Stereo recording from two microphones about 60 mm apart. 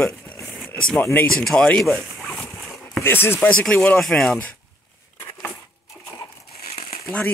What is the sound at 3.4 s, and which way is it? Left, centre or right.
Speech, left.